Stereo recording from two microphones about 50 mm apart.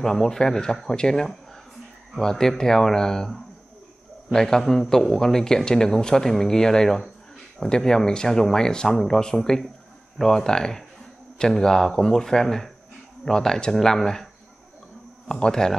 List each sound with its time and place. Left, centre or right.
0.0 s a man's voice: centre